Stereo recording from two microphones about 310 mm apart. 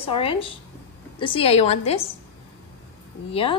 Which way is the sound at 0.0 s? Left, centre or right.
Centre.